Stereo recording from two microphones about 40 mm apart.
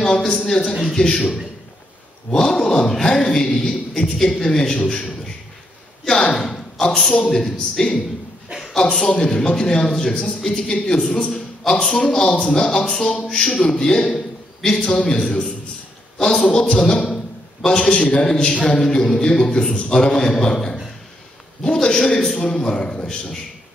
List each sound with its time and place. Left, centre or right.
0.0 s a man's voice: centre
2.3 s a man's voice: centre
6.0 s a man's voice: centre
9.1 s a woman's voice: centre
21.8 s a man's voice: centre